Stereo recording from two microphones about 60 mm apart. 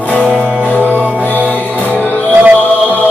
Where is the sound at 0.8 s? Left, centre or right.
Right.